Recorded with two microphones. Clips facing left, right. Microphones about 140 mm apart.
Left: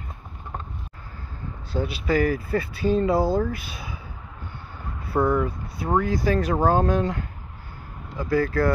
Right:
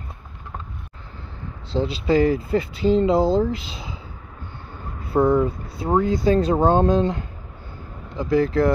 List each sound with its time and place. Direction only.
1.7 s speech: 25° right (ahead or behind)
5.1 s speech: 25° right (ahead or behind)